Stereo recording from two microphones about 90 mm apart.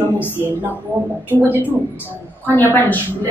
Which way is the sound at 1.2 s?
20° left (ahead or behind).